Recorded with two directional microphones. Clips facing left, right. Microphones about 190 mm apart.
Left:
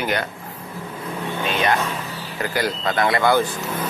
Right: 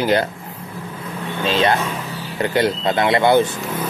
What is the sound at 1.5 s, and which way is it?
Speech, 30° right (ahead or behind).